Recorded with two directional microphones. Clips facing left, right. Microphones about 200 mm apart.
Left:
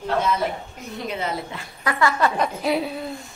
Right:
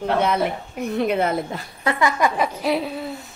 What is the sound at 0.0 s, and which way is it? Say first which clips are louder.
A woman's voice: right 3 dB; 65° right (ahead or behind).